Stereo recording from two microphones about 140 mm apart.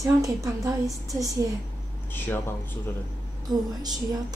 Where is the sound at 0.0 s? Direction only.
20° right (ahead or behind).